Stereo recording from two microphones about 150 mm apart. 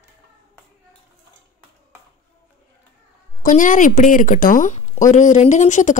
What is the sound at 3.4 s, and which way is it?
A woman's voice, 60° left (ahead or behind).